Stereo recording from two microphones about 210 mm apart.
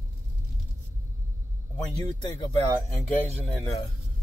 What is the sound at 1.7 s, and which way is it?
A man's voice, 20° left (ahead or behind).